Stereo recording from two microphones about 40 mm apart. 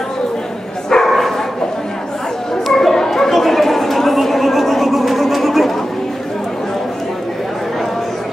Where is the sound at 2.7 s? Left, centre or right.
Centre.